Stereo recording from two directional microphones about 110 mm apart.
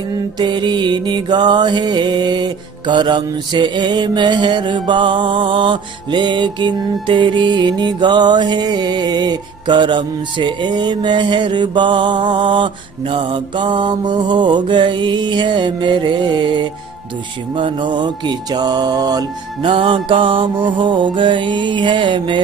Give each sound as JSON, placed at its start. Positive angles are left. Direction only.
{"t": 0.4, "sound": "mantra", "side_deg": -45}
{"t": 17.6, "sound": "music", "side_deg": -50}
{"t": 19.6, "sound": "mantra", "side_deg": -50}